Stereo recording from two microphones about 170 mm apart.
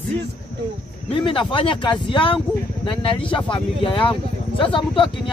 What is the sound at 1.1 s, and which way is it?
Speech, 30° left (ahead or behind).